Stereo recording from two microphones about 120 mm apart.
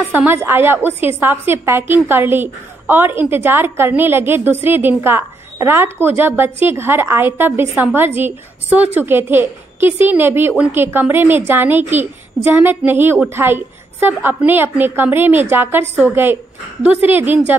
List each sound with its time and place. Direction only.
0.1 s a woman's voice: 15° right (ahead or behind)
16.8 s a woman's voice: 15° right (ahead or behind)